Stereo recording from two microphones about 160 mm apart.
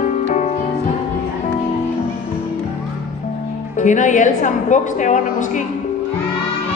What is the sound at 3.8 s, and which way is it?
A woman's voice, 50° left (ahead or behind).